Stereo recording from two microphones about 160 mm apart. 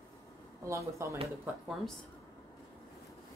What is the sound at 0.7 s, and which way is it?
Speech, 20° right (ahead or behind).